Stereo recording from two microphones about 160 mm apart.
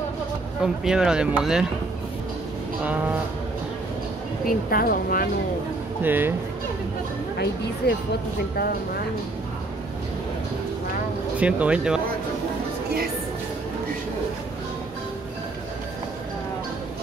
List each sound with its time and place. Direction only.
0.6 s speech: 5° right (ahead or behind)
2.8 s speech: 10° right (ahead or behind)
4.5 s speech: 65° left (ahead or behind)
6.0 s speech: 10° right (ahead or behind)
7.8 s speech: 90° left
11.3 s speech: 10° right (ahead or behind)